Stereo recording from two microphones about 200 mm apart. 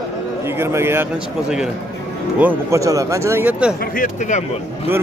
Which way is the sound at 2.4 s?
15° right (ahead or behind).